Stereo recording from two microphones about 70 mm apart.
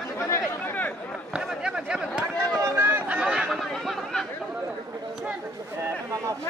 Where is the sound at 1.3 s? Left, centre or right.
Centre.